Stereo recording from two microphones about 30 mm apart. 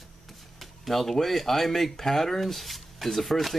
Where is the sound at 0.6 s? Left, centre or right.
Centre.